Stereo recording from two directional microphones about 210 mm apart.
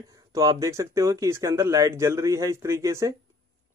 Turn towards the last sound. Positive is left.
turn(degrees=-15)  # may be behind; listen again after turning